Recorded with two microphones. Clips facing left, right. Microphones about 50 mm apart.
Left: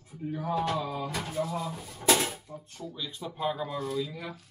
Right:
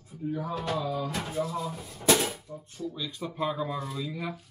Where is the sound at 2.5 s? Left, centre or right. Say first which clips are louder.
Right 1 dB; left.